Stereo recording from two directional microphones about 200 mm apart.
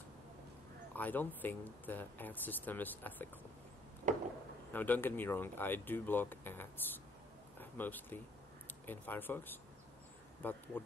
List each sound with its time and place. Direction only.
0.9 s speech: 10° left (ahead or behind)
4.1 s a sound: 40° right (ahead or behind)
4.7 s speech: 10° left (ahead or behind)